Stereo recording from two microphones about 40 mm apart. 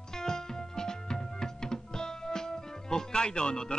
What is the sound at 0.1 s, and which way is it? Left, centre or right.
Music, centre.